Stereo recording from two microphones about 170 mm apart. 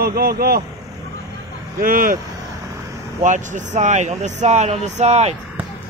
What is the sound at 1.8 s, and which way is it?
Speech, 55° right (ahead or behind).